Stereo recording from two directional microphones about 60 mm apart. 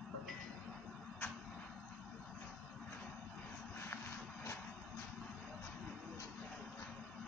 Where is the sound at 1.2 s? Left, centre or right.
Left.